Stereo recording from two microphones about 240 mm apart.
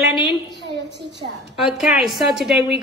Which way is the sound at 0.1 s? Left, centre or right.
Centre.